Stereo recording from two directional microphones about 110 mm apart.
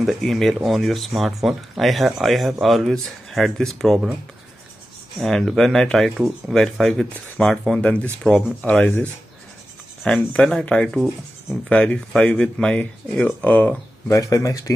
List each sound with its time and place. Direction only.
0.0 s speech: centre (ahead or behind)
5.2 s speech: centre (ahead or behind)
10.0 s speech: 10° left (ahead or behind)
14.0 s speech: 30° left (ahead or behind)